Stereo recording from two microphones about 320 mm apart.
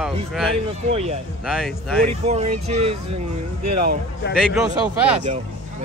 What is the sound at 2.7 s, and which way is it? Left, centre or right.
Speech, centre.